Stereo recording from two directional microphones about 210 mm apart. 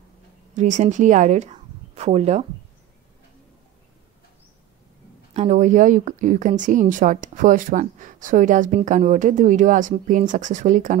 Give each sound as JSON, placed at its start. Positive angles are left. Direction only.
{"t": 0.6, "sound": "speech", "side_deg": -35}
{"t": 5.3, "sound": "speech", "side_deg": -30}